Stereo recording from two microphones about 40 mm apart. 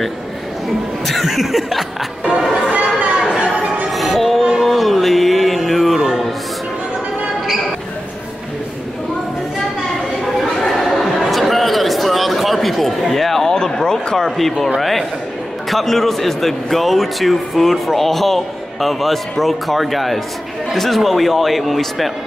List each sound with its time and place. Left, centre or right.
1.0 s chuckle: centre
2.7 s chatter: right
3.9 s music: centre
10.4 s a sound: centre
14.1 s a man's voice: centre